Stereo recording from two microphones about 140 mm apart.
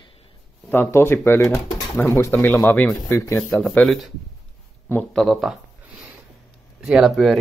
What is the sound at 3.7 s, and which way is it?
Speech, 10° left (ahead or behind).